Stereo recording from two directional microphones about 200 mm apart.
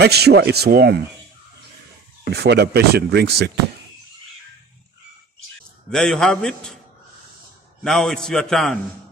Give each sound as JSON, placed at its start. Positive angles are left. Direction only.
{"t": 0.0, "sound": "speech", "side_deg": -55}
{"t": 2.3, "sound": "speech", "side_deg": -55}
{"t": 5.9, "sound": "a man's voice", "side_deg": 0}
{"t": 7.8, "sound": "a man's voice", "side_deg": 0}